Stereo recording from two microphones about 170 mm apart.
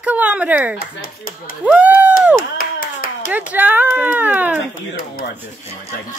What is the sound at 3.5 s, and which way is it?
Speech, 10° right (ahead or behind).